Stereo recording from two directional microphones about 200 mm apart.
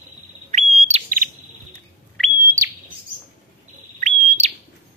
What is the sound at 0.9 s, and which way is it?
Smoke detector, 30° right (ahead or behind).